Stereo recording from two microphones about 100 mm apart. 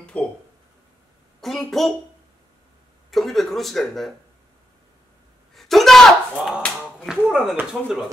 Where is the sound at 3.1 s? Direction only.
Centre (ahead or behind).